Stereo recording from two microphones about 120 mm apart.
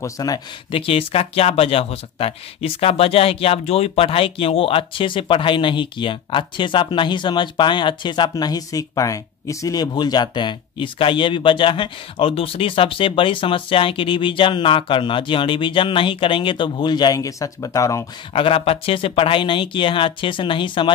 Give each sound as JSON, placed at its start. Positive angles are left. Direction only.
{"t": 0.0, "sound": "speech", "side_deg": 30}
{"t": 0.7, "sound": "speech", "side_deg": 50}
{"t": 18.3, "sound": "speech", "side_deg": 50}